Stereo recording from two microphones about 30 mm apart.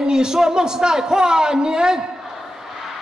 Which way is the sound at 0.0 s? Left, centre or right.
Right.